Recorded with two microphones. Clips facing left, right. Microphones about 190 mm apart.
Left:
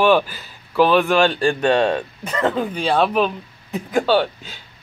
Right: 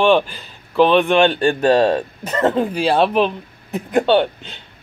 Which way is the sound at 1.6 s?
35° right (ahead or behind).